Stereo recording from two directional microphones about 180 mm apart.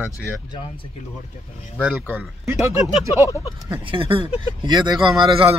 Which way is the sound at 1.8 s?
10° right (ahead or behind).